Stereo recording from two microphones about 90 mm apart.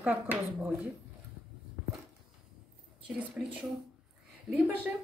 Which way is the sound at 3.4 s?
20° right (ahead or behind).